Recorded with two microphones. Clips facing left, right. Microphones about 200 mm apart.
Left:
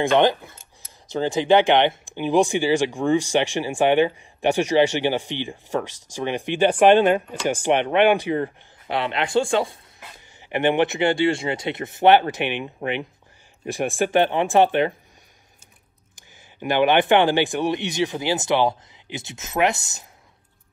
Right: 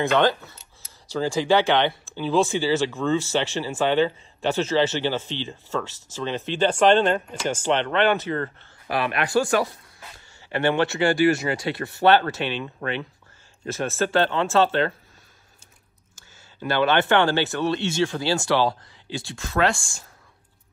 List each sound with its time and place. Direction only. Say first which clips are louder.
0.1 s speech: left 2 dB; 15° left (ahead or behind)
16.2 s speech: left 1 dB; 15° left (ahead or behind)